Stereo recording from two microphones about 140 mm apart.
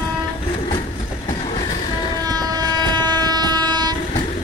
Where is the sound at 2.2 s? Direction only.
25° right (ahead or behind).